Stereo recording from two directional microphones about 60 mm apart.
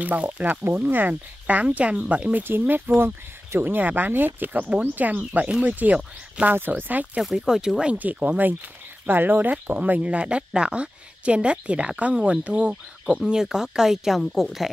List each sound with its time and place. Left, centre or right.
0.0 s speech: right
2.9 s speech: right
6.4 s speech: right
7.3 s speech: centre
7.9 s a woman's voice: right; by 14.7 s centre